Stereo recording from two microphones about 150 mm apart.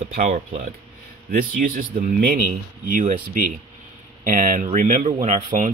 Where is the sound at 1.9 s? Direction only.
75° right (ahead or behind).